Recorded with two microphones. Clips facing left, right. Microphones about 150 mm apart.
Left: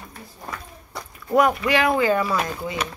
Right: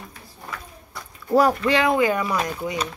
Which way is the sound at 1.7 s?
20° right (ahead or behind).